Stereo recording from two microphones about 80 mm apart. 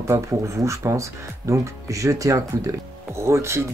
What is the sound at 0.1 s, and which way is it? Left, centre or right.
Speech, right.